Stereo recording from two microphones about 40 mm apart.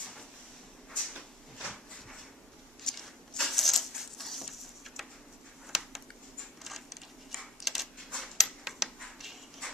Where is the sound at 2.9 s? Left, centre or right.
Centre.